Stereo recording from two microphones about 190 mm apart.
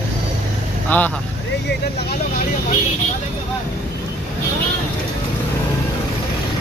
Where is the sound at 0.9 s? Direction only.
10° left (ahead or behind).